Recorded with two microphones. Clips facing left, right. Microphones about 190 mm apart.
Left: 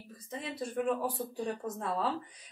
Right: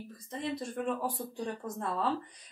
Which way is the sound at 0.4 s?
5° left (ahead or behind).